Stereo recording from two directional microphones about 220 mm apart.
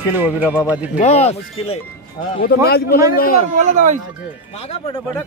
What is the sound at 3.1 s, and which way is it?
Speech, 40° left (ahead or behind).